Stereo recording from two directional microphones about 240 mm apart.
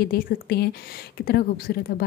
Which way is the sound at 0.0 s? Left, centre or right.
Left.